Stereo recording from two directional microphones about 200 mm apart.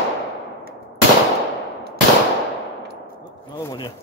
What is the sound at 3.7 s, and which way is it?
Speech, 25° left (ahead or behind).